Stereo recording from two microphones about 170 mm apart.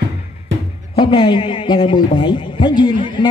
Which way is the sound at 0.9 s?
30° left (ahead or behind).